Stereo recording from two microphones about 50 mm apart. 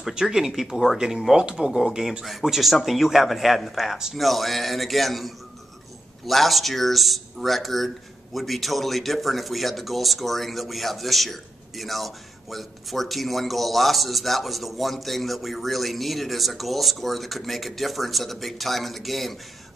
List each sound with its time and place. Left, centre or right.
0.1 s speech: centre
1.7 s speech: centre